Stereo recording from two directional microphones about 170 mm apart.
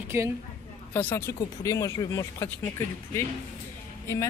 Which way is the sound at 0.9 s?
10° left (ahead or behind).